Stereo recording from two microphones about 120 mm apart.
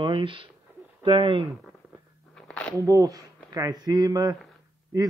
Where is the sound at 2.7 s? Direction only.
30° right (ahead or behind).